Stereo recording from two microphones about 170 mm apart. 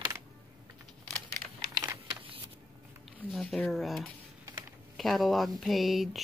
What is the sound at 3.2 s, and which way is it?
Speech, centre (ahead or behind).